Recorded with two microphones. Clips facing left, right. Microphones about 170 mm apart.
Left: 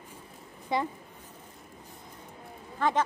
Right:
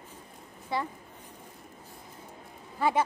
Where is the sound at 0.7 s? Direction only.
20° left (ahead or behind).